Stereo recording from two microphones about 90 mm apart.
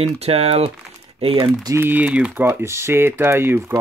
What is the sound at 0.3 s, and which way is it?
Speech, 90° right.